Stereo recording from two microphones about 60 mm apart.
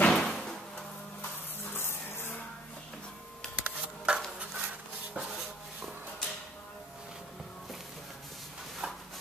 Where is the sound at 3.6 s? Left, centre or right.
Centre.